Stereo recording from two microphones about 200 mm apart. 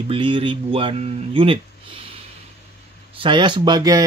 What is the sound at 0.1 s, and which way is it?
Speech, 25° right (ahead or behind).